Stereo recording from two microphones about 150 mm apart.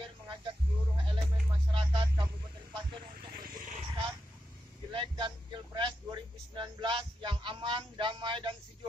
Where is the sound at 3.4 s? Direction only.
75° right (ahead or behind).